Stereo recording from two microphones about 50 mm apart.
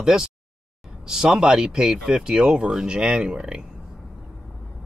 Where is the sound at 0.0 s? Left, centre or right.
Centre.